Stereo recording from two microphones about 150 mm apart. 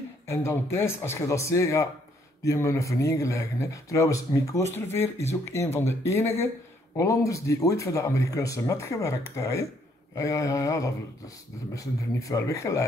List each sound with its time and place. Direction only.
0.3 s speech: 20° left (ahead or behind)